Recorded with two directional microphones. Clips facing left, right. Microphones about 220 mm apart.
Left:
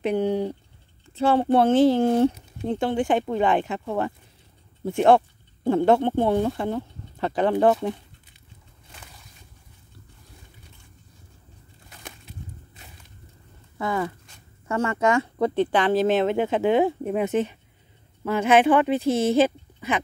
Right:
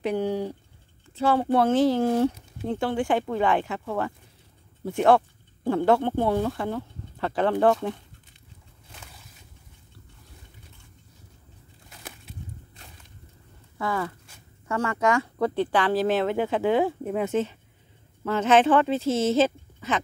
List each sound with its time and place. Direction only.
0.0 s speech: 20° left (ahead or behind)
13.7 s speech: 20° left (ahead or behind)